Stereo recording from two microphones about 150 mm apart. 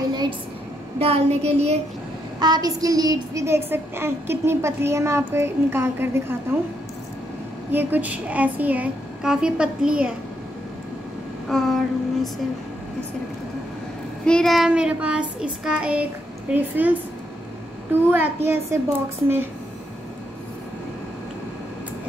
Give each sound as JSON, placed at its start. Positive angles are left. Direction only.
{"t": 0.9, "sound": "child singing", "side_deg": -45}
{"t": 2.4, "sound": "child singing", "side_deg": -25}
{"t": 7.7, "sound": "child singing", "side_deg": -10}
{"t": 11.4, "sound": "a sound", "side_deg": 0}
{"t": 14.2, "sound": "child singing", "side_deg": 5}
{"t": 18.1, "sound": "child singing", "side_deg": -15}